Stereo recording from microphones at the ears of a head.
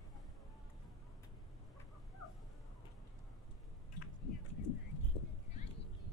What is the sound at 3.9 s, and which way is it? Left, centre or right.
Horse, left.